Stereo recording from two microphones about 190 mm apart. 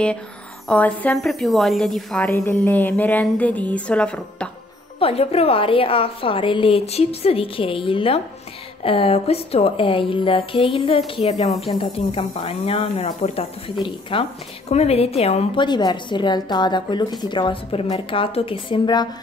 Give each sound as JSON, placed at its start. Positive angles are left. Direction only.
{"t": 0.7, "sound": "a woman's voice", "side_deg": 5}
{"t": 4.9, "sound": "speech", "side_deg": 30}